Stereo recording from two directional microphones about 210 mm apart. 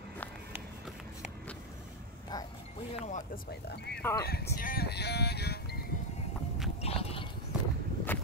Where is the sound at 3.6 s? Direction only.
50° left (ahead or behind).